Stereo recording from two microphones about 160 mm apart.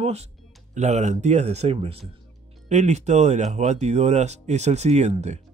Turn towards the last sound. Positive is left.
turn(degrees=-45)  # may be behind; listen again after turning